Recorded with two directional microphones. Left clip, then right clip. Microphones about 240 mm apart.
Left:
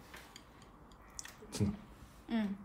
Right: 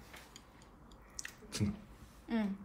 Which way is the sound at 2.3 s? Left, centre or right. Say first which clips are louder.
Right 1 dB; right.